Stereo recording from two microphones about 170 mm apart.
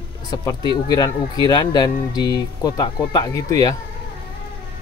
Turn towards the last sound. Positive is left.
turn(degrees=20)  # may be behind; listen again after turning